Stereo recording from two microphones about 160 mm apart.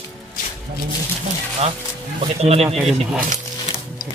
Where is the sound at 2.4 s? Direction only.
40° right (ahead or behind).